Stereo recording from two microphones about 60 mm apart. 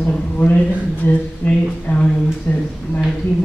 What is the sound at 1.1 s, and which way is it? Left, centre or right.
Speech, left.